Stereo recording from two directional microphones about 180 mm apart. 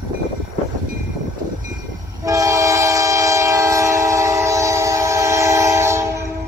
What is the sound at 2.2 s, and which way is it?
Train, 20° right (ahead or behind).